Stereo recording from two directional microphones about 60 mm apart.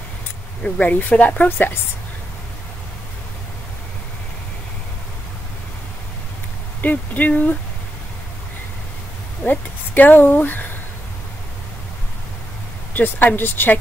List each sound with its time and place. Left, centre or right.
0.7 s a woman's voice: left
6.8 s a woman's voice: left
9.4 s speech: left
12.9 s a woman's voice: left